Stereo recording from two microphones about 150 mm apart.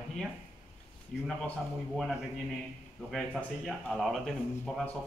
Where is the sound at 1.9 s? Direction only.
Centre (ahead or behind).